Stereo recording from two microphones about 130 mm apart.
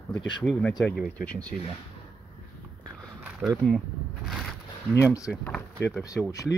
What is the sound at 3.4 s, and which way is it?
Speech, 5° right (ahead or behind).